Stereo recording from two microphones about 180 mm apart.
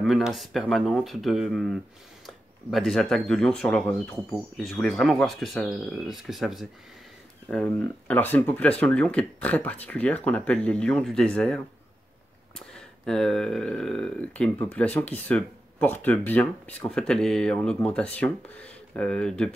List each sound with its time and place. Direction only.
0.0 s speech: centre (ahead or behind)